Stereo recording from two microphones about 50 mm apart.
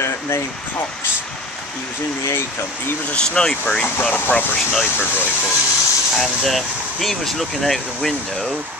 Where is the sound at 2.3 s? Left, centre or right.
Left.